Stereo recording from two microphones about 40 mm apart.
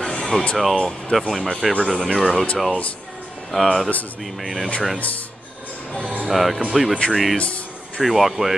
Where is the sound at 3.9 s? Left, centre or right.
Left.